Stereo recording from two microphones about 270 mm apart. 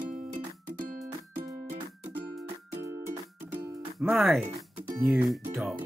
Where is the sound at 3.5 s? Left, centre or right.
Centre.